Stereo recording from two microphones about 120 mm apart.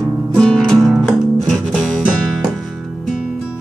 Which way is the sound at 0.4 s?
5° left (ahead or behind).